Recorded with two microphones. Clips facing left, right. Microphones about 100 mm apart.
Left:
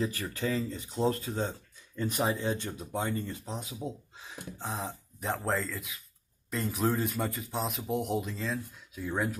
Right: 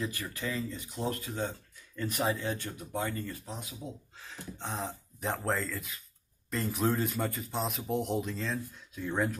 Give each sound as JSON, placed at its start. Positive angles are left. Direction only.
{"t": 0.0, "sound": "speech", "side_deg": 25}
{"t": 4.2, "sound": "a sound", "side_deg": 15}
{"t": 4.6, "sound": "speech", "side_deg": 0}